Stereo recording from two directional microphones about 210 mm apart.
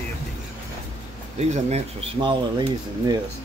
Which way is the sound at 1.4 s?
30° right (ahead or behind).